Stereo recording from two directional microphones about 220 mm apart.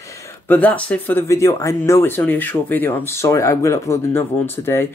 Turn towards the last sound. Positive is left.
turn(degrees=10)  # may be behind; listen again after turning